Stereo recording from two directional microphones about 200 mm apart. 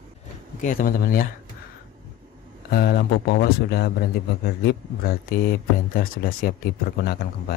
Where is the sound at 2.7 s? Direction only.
50° left (ahead or behind).